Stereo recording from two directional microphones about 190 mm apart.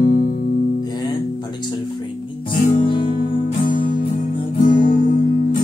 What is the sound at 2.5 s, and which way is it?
Music, 45° left (ahead or behind).